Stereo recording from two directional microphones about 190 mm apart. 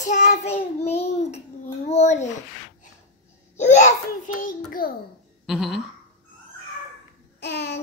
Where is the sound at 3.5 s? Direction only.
40° left (ahead or behind).